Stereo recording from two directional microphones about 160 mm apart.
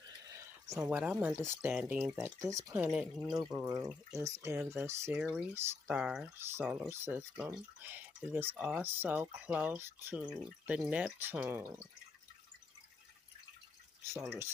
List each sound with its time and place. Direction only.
0.7 s speech: 20° right (ahead or behind)
0.9 s speech: 5° right (ahead or behind)
3.6 s speech: 20° right (ahead or behind)
14.0 s speech: 15° right (ahead or behind)